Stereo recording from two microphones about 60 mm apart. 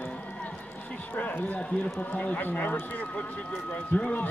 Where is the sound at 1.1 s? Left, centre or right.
Left.